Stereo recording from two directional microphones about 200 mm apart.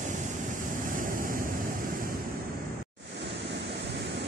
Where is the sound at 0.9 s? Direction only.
45° right (ahead or behind).